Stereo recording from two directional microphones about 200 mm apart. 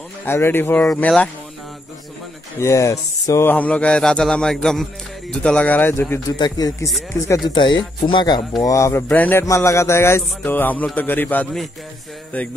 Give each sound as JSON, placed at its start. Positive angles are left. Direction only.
{"t": 0.2, "sound": "speech", "side_deg": 10}
{"t": 2.6, "sound": "speech", "side_deg": 15}